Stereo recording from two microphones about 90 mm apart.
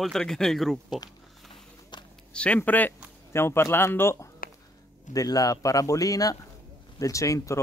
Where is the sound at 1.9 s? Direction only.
55° left (ahead or behind).